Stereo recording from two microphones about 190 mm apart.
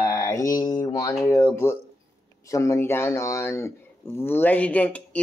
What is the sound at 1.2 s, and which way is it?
Speech, 15° left (ahead or behind).